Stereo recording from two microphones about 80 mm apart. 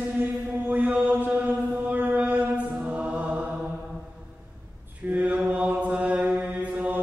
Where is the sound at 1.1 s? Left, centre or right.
Right.